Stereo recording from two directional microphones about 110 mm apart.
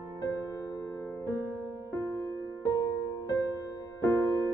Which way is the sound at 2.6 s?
30° left (ahead or behind).